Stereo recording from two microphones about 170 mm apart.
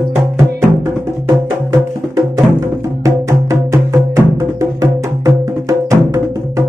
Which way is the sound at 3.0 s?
20° right (ahead or behind).